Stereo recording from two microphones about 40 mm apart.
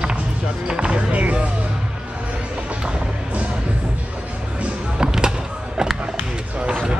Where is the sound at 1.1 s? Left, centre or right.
Right.